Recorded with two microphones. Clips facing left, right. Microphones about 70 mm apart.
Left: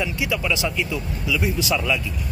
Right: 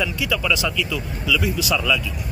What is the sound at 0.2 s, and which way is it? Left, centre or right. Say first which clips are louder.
Speech: right 1 dB; left.